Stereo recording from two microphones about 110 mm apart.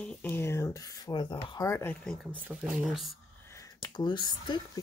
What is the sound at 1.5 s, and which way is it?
Speech, 25° left (ahead or behind).